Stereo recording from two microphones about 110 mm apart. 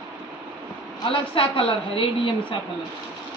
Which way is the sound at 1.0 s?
55° left (ahead or behind).